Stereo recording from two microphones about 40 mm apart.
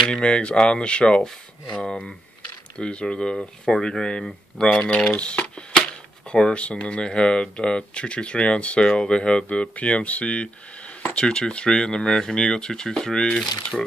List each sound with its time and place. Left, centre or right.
0.0 s speech: left
5.2 s typewriter: left
6.5 s speech: left
7.0 s speech: left